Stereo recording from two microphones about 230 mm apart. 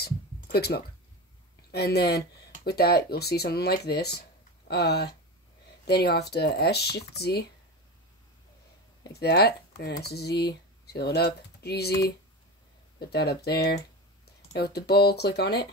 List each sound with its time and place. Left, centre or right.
0.0 s a sound: left
1.7 s speech: left
9.1 s speech: left
13.0 s speech: left